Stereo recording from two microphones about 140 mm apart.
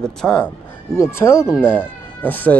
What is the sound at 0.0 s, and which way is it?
Speech, 5° left (ahead or behind).